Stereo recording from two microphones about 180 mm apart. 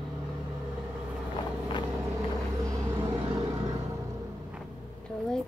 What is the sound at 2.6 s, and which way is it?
Vehicle, 15° right (ahead or behind).